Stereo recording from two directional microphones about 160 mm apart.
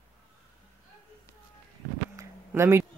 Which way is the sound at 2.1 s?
15° right (ahead or behind).